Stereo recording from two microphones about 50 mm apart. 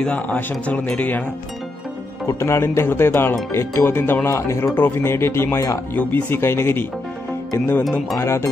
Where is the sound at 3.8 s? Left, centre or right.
Left.